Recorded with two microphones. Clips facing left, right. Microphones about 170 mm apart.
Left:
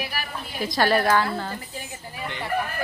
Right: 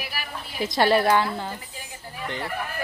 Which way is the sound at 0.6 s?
25° right (ahead or behind).